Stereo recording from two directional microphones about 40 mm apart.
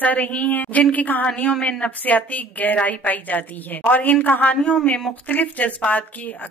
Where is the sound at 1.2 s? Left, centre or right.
Left.